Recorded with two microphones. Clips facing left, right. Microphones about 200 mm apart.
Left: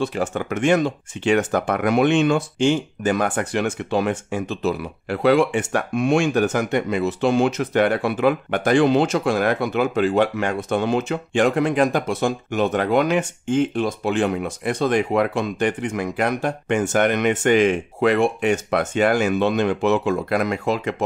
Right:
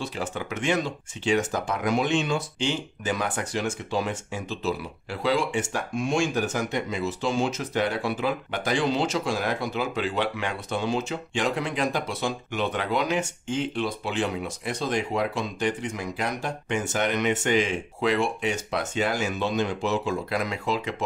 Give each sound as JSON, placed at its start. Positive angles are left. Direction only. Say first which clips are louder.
{"t": 0.0, "sound": "speech", "louder": "left 8 dB", "side_deg": 55}